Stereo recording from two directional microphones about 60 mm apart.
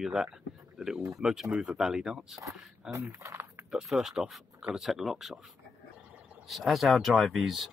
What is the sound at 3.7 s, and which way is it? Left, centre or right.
Speech, centre.